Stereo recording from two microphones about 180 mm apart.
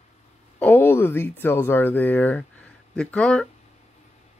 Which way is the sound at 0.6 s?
10° left (ahead or behind).